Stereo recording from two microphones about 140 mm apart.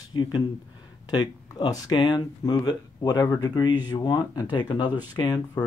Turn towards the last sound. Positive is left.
turn(degrees=30)  # may be behind; listen again after turning